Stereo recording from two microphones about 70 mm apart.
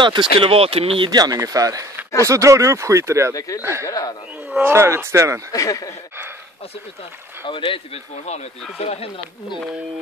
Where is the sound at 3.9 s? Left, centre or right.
Left.